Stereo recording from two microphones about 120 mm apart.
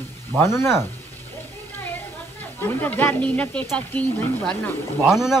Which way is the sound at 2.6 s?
15° left (ahead or behind).